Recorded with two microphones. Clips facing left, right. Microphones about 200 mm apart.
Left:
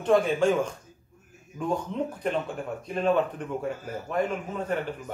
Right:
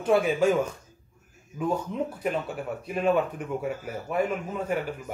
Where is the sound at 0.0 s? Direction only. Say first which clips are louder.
Even; 10° right (ahead or behind).